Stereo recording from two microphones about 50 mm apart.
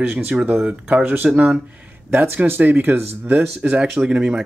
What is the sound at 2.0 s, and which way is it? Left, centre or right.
Speech, right.